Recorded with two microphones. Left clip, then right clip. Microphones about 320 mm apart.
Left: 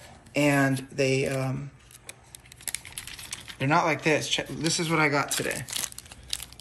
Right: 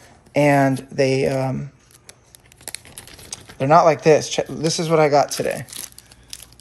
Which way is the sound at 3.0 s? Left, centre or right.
Centre.